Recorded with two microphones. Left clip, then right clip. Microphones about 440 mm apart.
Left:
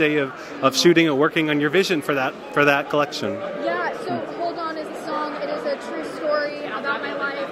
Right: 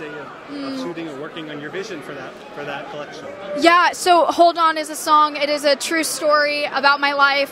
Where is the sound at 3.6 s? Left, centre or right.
Right.